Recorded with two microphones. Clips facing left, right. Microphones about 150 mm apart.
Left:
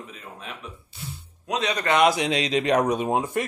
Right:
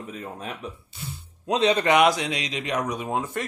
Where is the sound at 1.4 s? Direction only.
30° right (ahead or behind).